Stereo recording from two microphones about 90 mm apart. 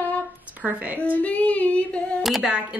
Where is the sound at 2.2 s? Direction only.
Centre (ahead or behind).